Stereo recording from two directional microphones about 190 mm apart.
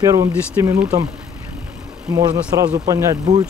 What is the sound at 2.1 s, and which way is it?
Speech, 20° right (ahead or behind).